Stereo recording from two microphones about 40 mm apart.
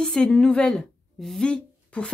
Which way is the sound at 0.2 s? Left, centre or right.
Left.